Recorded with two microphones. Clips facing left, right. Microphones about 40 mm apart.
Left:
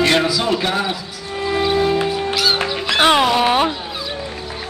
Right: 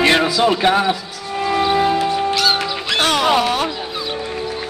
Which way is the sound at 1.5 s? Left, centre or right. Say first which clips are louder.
Right 1 dB; centre.